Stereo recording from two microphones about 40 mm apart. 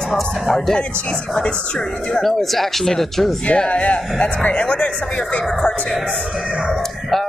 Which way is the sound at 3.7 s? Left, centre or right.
Left.